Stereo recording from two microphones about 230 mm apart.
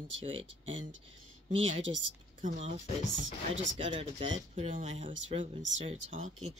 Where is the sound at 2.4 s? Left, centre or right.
Right.